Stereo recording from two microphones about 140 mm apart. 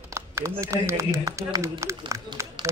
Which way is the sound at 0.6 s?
20° right (ahead or behind).